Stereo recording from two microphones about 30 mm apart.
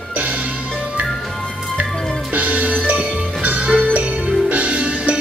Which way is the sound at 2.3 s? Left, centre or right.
Right.